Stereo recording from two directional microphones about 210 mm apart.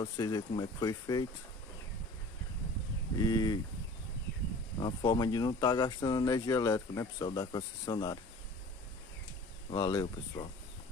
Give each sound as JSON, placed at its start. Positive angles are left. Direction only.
{"t": 0.0, "sound": "speech", "side_deg": 20}
{"t": 3.2, "sound": "speech", "side_deg": 20}
{"t": 4.7, "sound": "speech", "side_deg": 20}
{"t": 9.7, "sound": "speech", "side_deg": 20}